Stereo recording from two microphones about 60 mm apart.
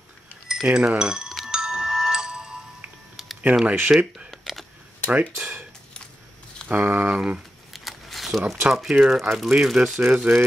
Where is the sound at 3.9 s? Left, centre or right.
Centre.